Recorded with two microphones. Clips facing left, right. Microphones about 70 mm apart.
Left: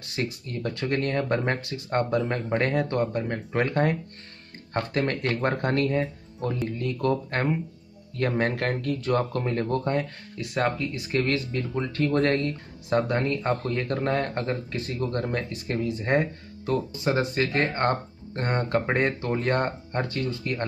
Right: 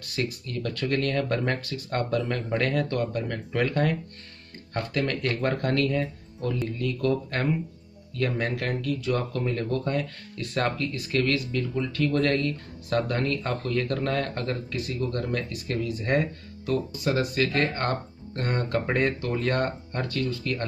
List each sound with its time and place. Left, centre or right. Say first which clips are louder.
0.0 s speech: even; left
10.3 s speech: left 1 dB; centre
11.0 s speech: right 1 dB; left